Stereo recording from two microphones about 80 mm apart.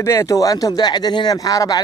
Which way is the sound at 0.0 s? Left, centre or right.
Left.